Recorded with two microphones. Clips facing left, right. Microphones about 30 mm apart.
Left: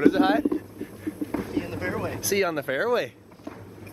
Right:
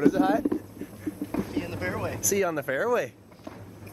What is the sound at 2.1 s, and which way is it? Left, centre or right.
Speech, left.